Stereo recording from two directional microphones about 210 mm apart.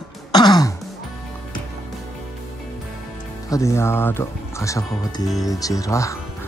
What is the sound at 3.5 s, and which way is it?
Speech, 15° left (ahead or behind).